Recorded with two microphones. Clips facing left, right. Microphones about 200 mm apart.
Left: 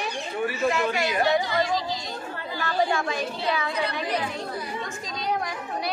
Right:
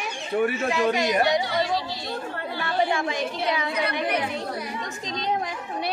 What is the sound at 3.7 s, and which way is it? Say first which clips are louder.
Speech: right 2 dB; 60° right (ahead or behind).